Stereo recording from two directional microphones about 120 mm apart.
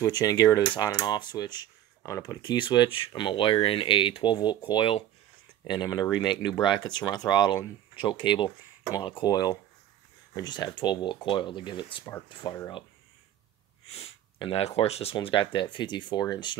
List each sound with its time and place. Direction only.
0.0 s speech: 30° left (ahead or behind)
2.0 s speech: 25° left (ahead or behind); by 12.5 s 45° left (ahead or behind)
13.9 s speech: 50° left (ahead or behind)
15.1 s speech: 40° left (ahead or behind)